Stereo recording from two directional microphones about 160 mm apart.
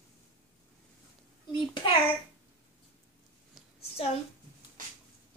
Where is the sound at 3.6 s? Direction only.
Centre (ahead or behind).